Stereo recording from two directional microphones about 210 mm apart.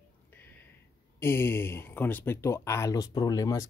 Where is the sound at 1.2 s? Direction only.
10° left (ahead or behind).